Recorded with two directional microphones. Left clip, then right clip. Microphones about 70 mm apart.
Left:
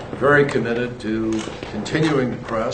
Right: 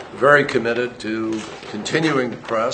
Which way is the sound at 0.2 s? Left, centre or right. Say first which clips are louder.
Right 2 dB; right.